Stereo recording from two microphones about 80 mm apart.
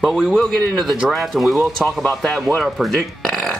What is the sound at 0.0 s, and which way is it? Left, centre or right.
Speech, centre.